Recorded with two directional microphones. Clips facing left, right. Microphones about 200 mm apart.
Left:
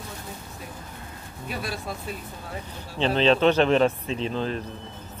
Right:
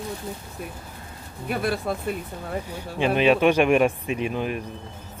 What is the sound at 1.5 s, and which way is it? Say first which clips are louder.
Speech: right 7 dB; 55° right (ahead or behind).